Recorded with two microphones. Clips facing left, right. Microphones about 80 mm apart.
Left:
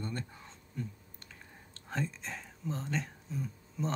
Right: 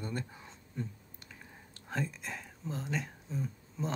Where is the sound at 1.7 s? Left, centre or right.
Centre.